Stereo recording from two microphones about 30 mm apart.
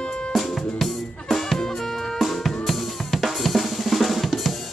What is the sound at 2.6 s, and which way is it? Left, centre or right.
Drum kit, centre.